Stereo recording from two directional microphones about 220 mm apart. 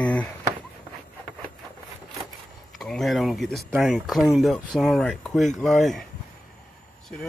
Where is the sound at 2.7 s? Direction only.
Centre (ahead or behind).